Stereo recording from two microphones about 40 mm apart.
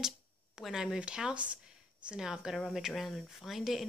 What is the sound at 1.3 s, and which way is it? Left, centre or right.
Speech, right.